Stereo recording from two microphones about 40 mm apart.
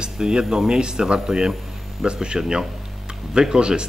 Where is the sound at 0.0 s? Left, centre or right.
Centre.